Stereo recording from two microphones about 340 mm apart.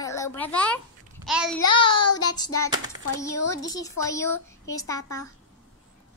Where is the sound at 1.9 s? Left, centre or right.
Left.